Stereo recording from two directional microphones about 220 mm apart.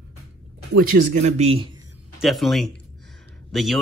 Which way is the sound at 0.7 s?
35° right (ahead or behind).